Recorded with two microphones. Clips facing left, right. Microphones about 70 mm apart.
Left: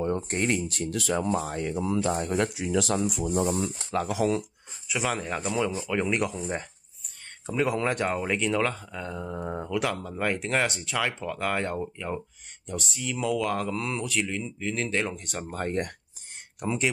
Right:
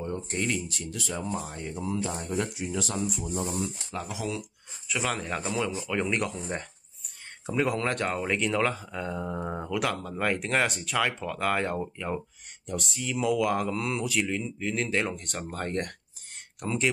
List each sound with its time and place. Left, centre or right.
0.0 s speech: left
3.6 s speech: left
4.1 s speech: left
4.8 s speech: centre